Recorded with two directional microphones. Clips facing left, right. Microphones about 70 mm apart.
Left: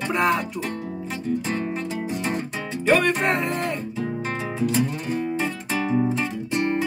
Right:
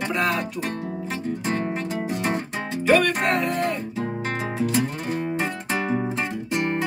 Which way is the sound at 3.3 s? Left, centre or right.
Left.